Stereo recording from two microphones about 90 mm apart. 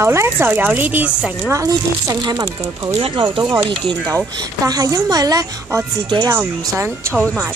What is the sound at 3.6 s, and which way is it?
Speech, 60° right (ahead or behind).